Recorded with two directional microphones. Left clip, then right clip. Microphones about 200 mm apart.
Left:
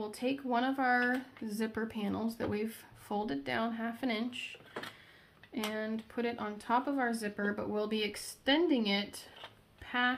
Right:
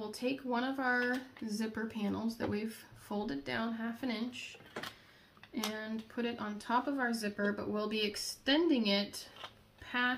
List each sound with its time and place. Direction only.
0.1 s speech: 40° left (ahead or behind)
5.5 s speech: 40° left (ahead or behind)